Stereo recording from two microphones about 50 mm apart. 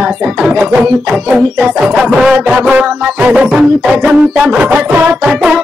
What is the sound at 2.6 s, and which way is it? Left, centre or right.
Music, right.